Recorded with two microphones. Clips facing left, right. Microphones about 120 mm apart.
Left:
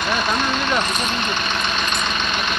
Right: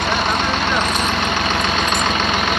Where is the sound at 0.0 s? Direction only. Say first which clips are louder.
Right 2 dB; 65° right (ahead or behind).